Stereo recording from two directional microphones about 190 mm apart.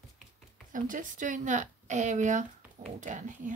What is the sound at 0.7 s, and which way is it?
A woman's voice, 45° right (ahead or behind).